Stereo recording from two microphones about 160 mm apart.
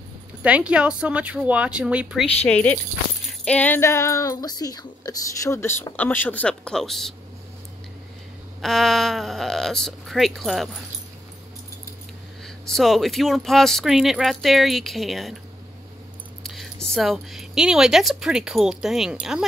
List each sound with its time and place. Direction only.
0.4 s speech: 10° right (ahead or behind)
2.4 s speech: 10° left (ahead or behind)
8.5 s speech: centre (ahead or behind)
12.4 s speech: centre (ahead or behind)
16.4 s speech: centre (ahead or behind)